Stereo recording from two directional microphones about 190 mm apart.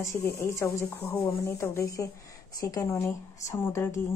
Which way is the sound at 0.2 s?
15° left (ahead or behind).